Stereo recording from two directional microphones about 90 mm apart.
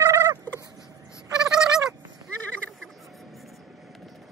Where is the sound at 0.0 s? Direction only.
40° right (ahead or behind).